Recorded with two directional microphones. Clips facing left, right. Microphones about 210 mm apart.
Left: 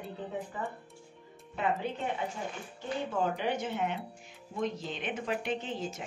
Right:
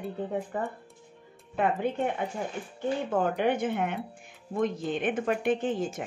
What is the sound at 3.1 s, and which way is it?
A woman's voice, 55° right (ahead or behind).